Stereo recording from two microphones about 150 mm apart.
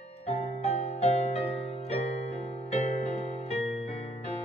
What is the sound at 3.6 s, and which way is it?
Music, 45° left (ahead or behind).